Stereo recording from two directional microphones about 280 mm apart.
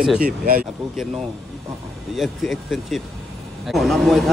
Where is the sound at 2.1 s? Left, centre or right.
Centre.